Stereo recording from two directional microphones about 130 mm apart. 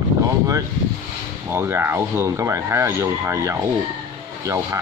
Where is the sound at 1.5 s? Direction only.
20° right (ahead or behind).